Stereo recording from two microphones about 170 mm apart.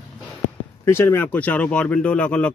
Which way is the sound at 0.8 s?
15° left (ahead or behind).